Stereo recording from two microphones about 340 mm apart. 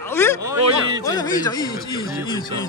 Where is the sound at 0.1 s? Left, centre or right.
Centre.